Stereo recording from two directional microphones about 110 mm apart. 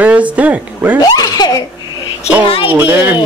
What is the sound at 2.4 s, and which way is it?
Speech, 55° left (ahead or behind).